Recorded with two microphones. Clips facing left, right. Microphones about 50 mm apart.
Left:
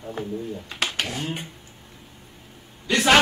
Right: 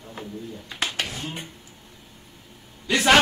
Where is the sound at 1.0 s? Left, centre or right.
Left.